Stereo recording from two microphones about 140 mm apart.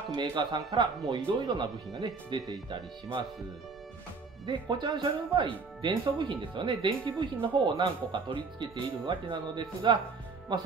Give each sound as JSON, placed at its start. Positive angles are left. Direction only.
{"t": 0.1, "sound": "speech", "side_deg": -30}
{"t": 4.5, "sound": "speech", "side_deg": -35}